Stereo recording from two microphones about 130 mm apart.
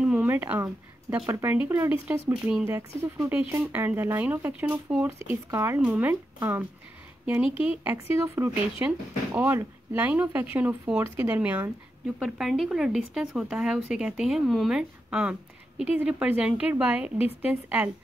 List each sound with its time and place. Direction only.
0.0 s a sound: 10° right (ahead or behind)
1.2 s a woman's voice: 20° right (ahead or behind)
2.7 s a woman's voice: 20° right (ahead or behind)
7.6 s a woman's voice: 15° right (ahead or behind)
12.2 s a woman's voice: centre (ahead or behind)